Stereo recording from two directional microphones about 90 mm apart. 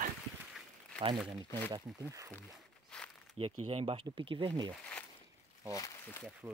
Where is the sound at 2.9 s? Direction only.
10° left (ahead or behind).